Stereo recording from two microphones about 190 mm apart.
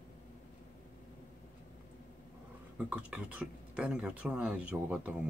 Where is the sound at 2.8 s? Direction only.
5° right (ahead or behind).